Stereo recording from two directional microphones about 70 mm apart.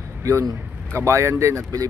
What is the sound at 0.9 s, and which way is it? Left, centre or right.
Speech, right.